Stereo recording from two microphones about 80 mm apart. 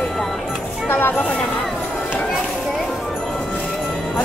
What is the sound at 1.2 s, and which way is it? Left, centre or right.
Speech, centre.